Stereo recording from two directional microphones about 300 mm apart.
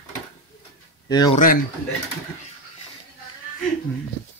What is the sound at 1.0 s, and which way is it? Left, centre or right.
Speech, centre.